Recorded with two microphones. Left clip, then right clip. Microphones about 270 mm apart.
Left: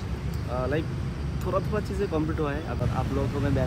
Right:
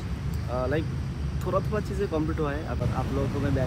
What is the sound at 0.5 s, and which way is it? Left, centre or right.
Speech, centre.